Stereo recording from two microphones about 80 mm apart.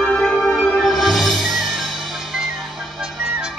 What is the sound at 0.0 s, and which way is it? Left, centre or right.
Music, centre.